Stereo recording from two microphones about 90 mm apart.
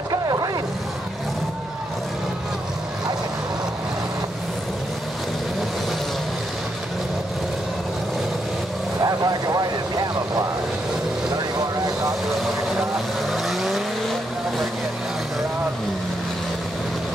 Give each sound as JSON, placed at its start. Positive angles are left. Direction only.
{"t": 0.1, "sound": "vehicle", "side_deg": -45}
{"t": 9.0, "sound": "vehicle", "side_deg": -40}
{"t": 13.3, "sound": "vehicle", "side_deg": 0}